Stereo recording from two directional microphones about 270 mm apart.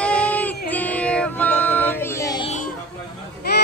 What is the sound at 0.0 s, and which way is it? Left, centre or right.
Music, centre.